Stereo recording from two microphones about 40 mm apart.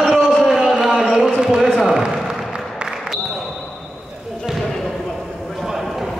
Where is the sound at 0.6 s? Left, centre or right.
Centre.